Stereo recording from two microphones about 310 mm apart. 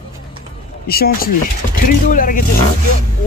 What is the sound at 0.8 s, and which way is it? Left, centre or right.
Speech, left.